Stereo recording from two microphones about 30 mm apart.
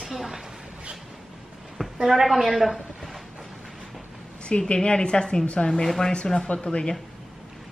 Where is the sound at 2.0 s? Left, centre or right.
Centre.